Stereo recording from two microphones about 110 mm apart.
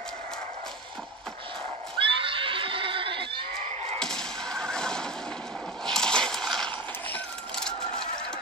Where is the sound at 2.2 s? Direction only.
55° right (ahead or behind).